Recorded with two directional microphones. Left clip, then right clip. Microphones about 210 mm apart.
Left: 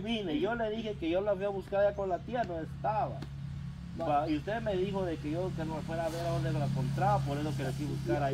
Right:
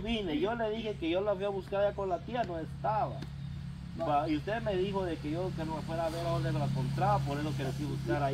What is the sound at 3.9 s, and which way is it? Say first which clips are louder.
Speech: even; 15° left (ahead or behind).